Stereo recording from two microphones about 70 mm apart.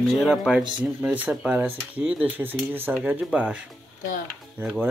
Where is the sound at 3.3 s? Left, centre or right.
Centre.